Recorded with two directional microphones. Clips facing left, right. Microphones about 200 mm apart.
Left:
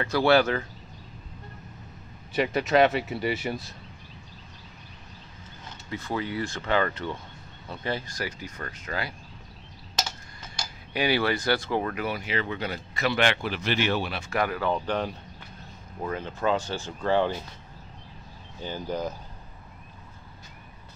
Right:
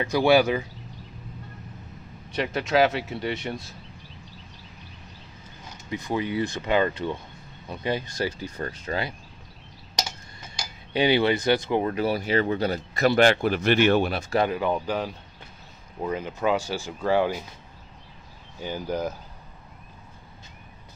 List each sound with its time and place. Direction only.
0.0 s speech: 15° right (ahead or behind)
2.3 s speech: centre (ahead or behind)
5.9 s speech: 15° right (ahead or behind)
9.9 s tick-tock: 10° right (ahead or behind)
10.9 s speech: 20° right (ahead or behind); by 14.2 s 50° right (ahead or behind)
14.3 s speech: 25° right (ahead or behind)
18.6 s speech: 10° right (ahead or behind)